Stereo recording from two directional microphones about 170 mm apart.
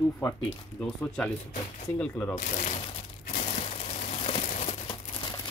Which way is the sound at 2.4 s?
40° left (ahead or behind).